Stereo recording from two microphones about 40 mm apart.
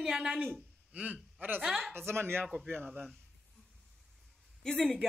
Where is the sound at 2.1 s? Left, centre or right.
Right.